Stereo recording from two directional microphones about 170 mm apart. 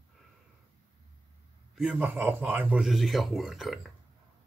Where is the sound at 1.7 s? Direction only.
5° right (ahead or behind).